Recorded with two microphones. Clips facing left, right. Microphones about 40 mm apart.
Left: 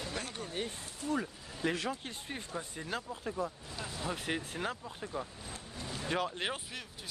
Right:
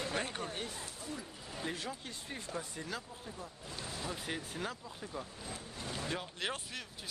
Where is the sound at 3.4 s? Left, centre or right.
Left.